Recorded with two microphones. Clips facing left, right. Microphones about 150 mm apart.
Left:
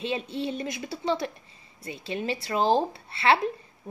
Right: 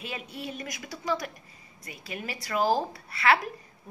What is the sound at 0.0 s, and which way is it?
Speech, 25° left (ahead or behind).